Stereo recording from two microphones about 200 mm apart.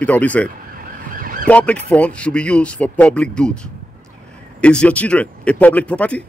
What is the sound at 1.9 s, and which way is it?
Speech, 5° left (ahead or behind).